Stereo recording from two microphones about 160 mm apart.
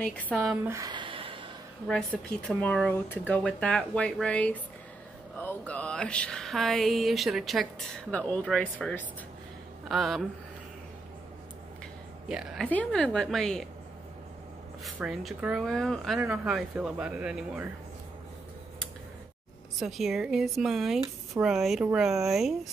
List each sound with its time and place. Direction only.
0.7 s a sound: 25° right (ahead or behind)
1.9 s speech: 5° left (ahead or behind)
12.3 s speech: 5° right (ahead or behind)
12.6 s speech: 10° left (ahead or behind)
14.9 s speech: centre (ahead or behind)
19.8 s speech: centre (ahead or behind)